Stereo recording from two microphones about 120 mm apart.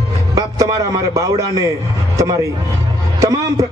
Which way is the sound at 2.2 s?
30° right (ahead or behind).